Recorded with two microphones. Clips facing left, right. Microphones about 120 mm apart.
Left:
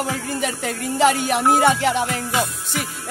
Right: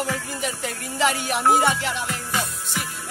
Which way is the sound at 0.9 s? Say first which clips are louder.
Left 6 dB; 50° left (ahead or behind).